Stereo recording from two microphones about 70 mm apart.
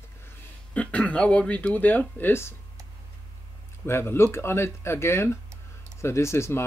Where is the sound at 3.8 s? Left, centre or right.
Left.